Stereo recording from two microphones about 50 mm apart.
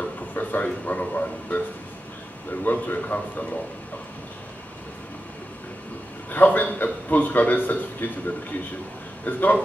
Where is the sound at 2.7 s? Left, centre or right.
Left.